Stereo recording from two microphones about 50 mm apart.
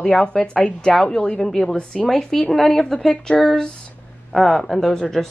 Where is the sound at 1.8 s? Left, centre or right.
Centre.